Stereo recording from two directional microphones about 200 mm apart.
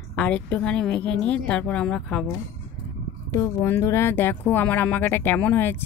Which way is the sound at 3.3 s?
15° left (ahead or behind).